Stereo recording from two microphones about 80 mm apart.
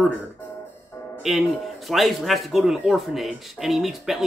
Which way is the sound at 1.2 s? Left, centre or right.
Centre.